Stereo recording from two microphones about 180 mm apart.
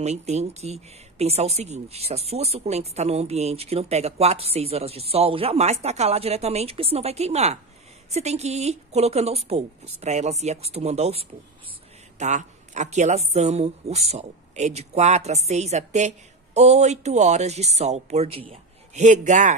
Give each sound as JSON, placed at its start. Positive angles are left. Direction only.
{"t": 0.0, "sound": "a man's voice", "side_deg": -40}